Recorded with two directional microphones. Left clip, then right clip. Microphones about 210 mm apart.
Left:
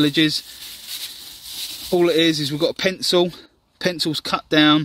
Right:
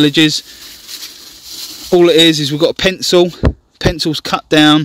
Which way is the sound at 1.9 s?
40° right (ahead or behind).